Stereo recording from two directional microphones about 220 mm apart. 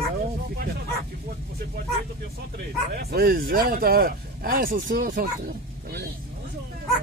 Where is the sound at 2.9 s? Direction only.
45° right (ahead or behind).